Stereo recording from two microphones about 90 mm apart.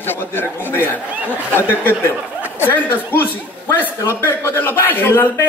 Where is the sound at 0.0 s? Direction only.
25° left (ahead or behind).